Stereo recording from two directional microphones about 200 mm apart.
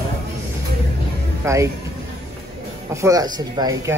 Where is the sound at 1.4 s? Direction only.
15° right (ahead or behind).